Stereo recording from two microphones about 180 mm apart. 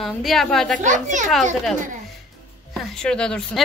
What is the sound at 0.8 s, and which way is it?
Speech, 45° right (ahead or behind).